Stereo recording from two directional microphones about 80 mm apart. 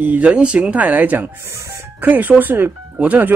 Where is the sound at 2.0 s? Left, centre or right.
Right.